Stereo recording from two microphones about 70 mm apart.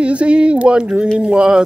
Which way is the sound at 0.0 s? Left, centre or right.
Centre.